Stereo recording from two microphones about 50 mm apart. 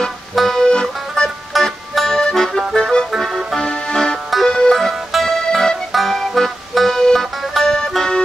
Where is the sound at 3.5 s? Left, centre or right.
Centre.